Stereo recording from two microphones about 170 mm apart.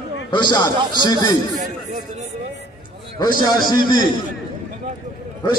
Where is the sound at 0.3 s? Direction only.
25° left (ahead or behind).